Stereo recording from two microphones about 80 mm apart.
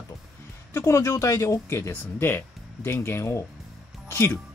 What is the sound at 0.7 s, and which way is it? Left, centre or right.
Speech, left.